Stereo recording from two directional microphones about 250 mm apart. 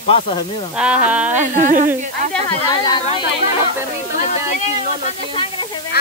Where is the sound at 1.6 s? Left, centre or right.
Right.